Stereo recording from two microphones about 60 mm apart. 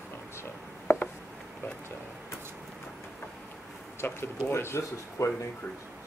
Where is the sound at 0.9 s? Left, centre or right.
Left.